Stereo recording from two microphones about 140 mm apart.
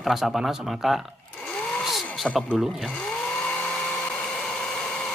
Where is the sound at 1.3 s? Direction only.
10° left (ahead or behind).